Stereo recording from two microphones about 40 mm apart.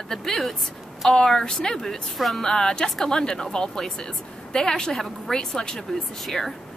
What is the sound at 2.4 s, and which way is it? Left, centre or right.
A woman's voice, centre.